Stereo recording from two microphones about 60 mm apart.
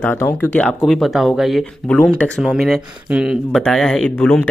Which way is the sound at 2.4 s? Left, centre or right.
Centre.